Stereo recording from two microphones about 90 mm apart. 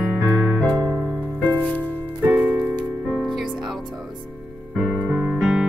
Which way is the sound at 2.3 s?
20° right (ahead or behind).